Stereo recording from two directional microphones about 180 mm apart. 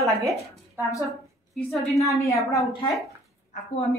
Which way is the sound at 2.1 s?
15° left (ahead or behind).